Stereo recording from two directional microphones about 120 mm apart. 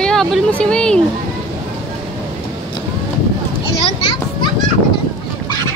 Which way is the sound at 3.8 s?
45° left (ahead or behind).